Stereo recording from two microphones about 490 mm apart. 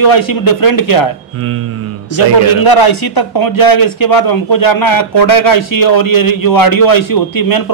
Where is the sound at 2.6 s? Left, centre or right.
Left.